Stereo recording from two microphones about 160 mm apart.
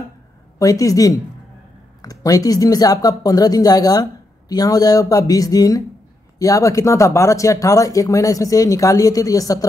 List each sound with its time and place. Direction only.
0.6 s speech: 20° left (ahead or behind)